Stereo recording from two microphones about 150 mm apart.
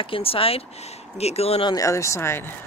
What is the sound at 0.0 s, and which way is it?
Speech, 40° left (ahead or behind).